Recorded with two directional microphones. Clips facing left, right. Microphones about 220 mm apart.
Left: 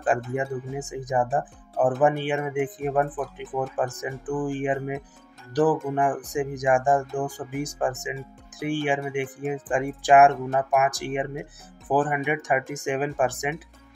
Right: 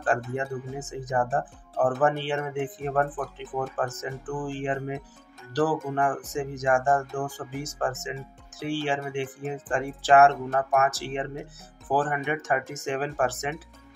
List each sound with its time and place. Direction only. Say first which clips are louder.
0.0 s speech: left 2 dB; 15° left (ahead or behind)